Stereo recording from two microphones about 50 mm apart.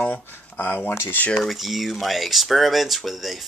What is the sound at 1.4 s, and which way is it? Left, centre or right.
Speech, centre.